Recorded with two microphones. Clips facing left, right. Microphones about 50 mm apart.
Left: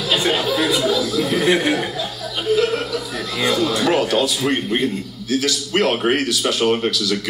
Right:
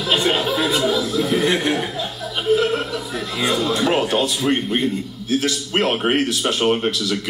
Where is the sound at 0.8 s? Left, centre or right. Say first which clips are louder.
Left 1 dB; right.